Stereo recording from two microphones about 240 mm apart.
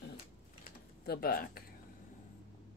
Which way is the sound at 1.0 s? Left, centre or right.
Left.